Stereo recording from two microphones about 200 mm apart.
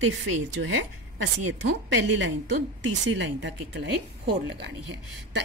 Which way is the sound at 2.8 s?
65° right (ahead or behind).